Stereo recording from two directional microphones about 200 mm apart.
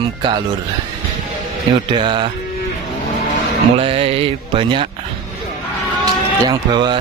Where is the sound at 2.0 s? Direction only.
25° right (ahead or behind).